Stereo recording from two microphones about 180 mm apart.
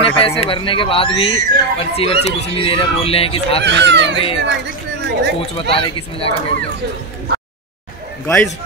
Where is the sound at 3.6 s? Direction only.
75° right (ahead or behind).